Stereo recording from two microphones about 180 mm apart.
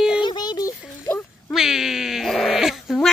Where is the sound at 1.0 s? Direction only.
10° left (ahead or behind).